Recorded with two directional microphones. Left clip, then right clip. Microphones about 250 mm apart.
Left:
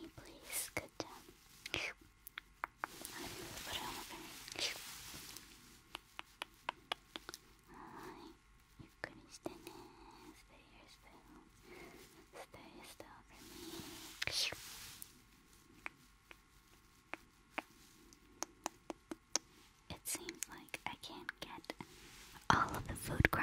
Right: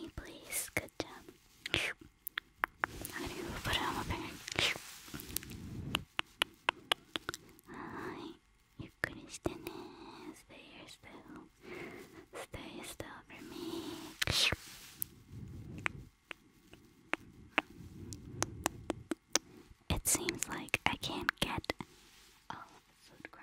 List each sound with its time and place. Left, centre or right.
0.0 s whispering: right
5.1 s a sound: right
9.0 s whispering: right
15.8 s a sound: right
20.1 s whispering: right
22.5 s whispering: left